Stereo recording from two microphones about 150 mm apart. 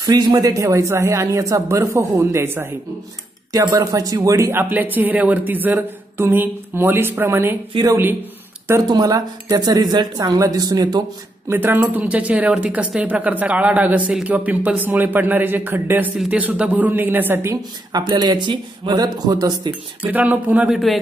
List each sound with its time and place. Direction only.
0.0 s a woman's voice: 25° right (ahead or behind)
11.4 s speech: 15° right (ahead or behind)
18.0 s a woman's voice: 30° right (ahead or behind)
20.1 s speech: 10° right (ahead or behind)